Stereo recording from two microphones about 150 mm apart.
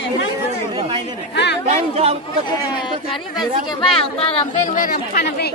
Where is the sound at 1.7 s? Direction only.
40° right (ahead or behind).